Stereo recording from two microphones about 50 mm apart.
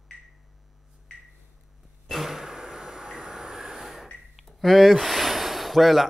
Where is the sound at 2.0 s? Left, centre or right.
Centre.